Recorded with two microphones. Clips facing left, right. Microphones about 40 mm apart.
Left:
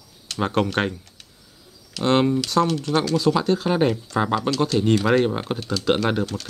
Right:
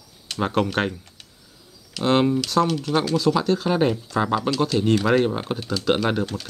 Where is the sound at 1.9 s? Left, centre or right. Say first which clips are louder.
Even; centre.